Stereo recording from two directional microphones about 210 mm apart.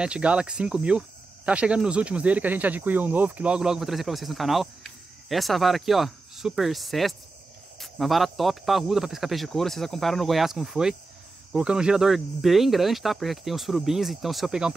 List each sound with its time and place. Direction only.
0.0 s speech: 5° right (ahead or behind)